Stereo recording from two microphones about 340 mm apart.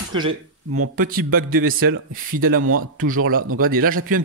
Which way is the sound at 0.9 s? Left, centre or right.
Right.